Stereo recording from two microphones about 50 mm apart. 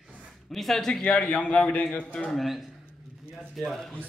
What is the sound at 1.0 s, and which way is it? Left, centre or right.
A man's voice, left.